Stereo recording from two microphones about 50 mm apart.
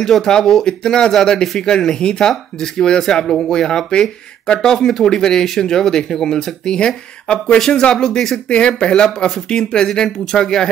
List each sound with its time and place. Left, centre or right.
0.0 s speech: centre